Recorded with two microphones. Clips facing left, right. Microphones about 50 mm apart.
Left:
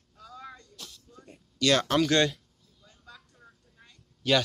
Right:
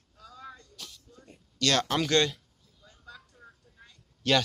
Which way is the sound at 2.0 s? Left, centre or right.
Centre.